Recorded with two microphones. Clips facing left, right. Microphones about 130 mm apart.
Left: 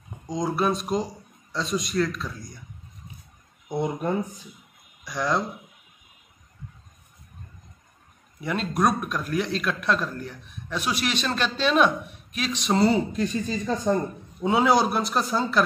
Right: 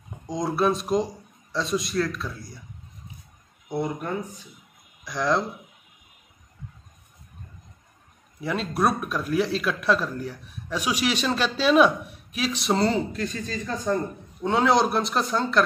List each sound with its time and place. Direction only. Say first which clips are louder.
0.3 s speech: right 1 dB; centre (ahead or behind)
3.6 s speech: left 1 dB; 15° left (ahead or behind)
5.0 s speech: right 2 dB; centre (ahead or behind)
8.4 s speech: even; centre (ahead or behind)
12.8 s speech: left 2 dB; 15° left (ahead or behind)
14.4 s speech: even; 5° left (ahead or behind)